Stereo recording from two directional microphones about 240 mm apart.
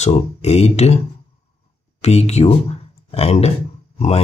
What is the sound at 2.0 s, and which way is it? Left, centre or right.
Speech, left.